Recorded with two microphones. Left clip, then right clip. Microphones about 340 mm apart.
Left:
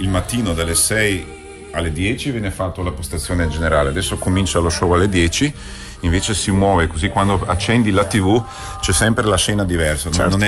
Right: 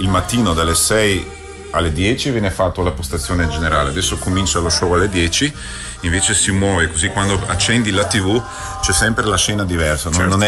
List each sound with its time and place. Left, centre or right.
0.0 s speech: centre
3.6 s speech: left
9.3 s speech: centre